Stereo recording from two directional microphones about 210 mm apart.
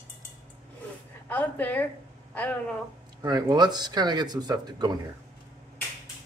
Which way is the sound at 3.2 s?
20° right (ahead or behind).